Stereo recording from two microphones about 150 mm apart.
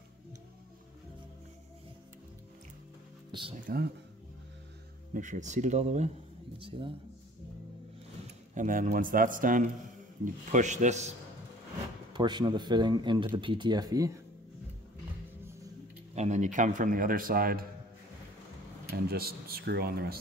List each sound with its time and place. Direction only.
3.3 s music: 30° right (ahead or behind)
3.6 s speech: 90° right
5.1 s speech: 55° right (ahead or behind)
8.5 s a man's voice: 60° right (ahead or behind)
12.1 s speech: 30° right (ahead or behind)
16.2 s a man's voice: 50° right (ahead or behind); by 17.6 s 75° right (ahead or behind)
18.9 s speech: 90° right